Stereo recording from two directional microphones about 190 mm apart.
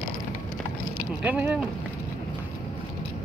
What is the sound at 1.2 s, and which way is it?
Speech, 10° right (ahead or behind).